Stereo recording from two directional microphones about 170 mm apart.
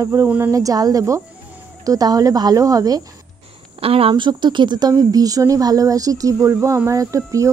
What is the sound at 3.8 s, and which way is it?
Speech, 35° right (ahead or behind).